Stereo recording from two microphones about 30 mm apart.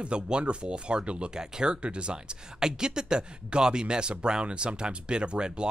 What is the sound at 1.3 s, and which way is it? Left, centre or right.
Speech, right.